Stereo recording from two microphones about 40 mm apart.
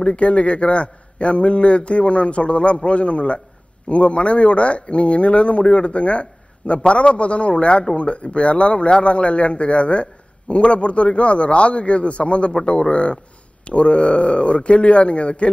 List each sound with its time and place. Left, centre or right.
0.0 s a man's voice: left